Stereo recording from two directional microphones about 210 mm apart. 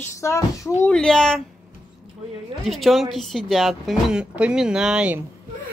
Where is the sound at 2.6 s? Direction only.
Centre (ahead or behind).